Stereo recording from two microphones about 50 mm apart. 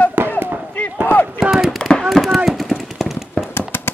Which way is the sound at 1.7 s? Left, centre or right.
Centre.